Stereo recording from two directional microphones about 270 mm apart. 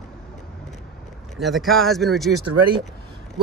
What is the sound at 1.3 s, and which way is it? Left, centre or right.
Speech, centre.